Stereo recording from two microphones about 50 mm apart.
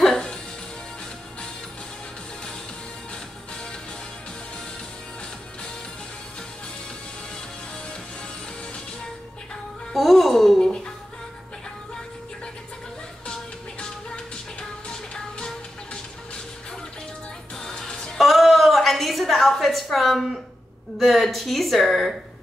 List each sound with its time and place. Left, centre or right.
0.0 s music: centre
9.9 s music: centre
13.3 s music: left
17.6 s music: centre
18.1 s a sound: centre
21.0 s speech: centre